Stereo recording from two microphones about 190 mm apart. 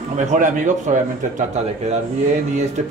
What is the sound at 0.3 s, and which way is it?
Speech, 40° right (ahead or behind).